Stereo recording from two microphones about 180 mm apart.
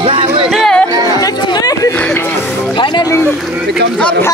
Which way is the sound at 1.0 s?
20° left (ahead or behind).